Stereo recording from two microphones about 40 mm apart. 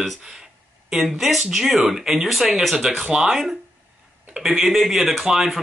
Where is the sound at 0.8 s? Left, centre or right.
Centre.